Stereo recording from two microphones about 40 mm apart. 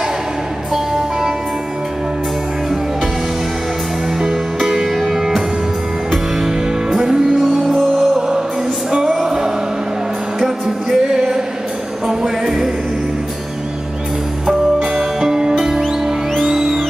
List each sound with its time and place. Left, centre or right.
4.2 s music: centre
7.0 s music: centre
7.3 s music: centre
7.9 s music: centre
14.4 s music: centre